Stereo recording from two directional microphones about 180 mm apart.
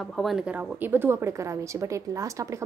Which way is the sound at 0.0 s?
Centre (ahead or behind).